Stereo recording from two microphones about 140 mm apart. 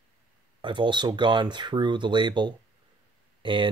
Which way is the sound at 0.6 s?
35° right (ahead or behind).